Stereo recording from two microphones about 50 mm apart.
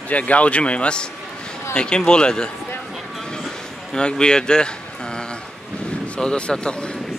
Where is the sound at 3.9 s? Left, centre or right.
Centre.